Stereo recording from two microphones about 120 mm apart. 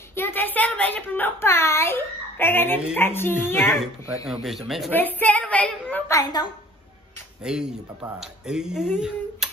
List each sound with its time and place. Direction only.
0.1 s a woman's voice: 20° left (ahead or behind)
4.3 s speech: centre (ahead or behind)
4.9 s a woman's voice: 15° left (ahead or behind)
6.2 s a woman's voice: 35° left (ahead or behind)
7.4 s speech: 5° right (ahead or behind)